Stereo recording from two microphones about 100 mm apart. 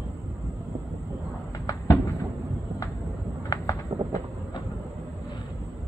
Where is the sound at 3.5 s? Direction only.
35° left (ahead or behind).